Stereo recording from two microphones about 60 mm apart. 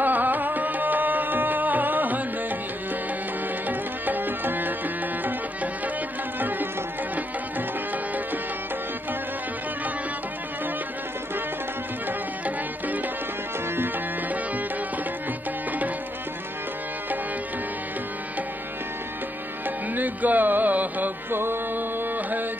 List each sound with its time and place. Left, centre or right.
0.0 s music: right
3.6 s music: right
12.1 s music: right
19.9 s music: right